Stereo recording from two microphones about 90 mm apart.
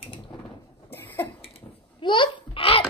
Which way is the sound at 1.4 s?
75° left (ahead or behind).